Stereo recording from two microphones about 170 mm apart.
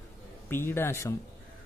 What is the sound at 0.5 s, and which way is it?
Speech, 15° left (ahead or behind).